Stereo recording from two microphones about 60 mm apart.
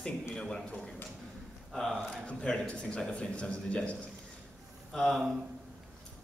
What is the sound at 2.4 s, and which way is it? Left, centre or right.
A man's voice, centre.